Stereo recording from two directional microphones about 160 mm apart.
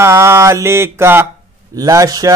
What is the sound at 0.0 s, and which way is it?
Mantra, 15° right (ahead or behind).